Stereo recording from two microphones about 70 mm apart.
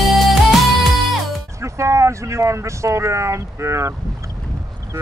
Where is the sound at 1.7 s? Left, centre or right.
Right.